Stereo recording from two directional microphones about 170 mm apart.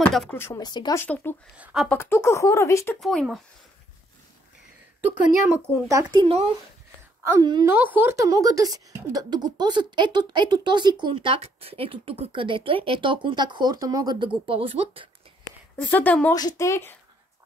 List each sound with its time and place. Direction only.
0.0 s speech: 5° left (ahead or behind)
0.4 s speech: 25° left (ahead or behind)
1.0 s speech: 10° left (ahead or behind)
1.6 s speech: 5° right (ahead or behind)
1.9 s speech: 15° left (ahead or behind)
3.0 s speech: centre (ahead or behind)
5.1 s speech: 15° right (ahead or behind)
6.1 s speech: 35° right (ahead or behind)
7.2 s speech: 20° right (ahead or behind)
7.7 s speech: 10° right (ahead or behind); by 15.0 s 35° right (ahead or behind)
15.7 s speech: 10° left (ahead or behind)
16.3 s speech: 20° left (ahead or behind)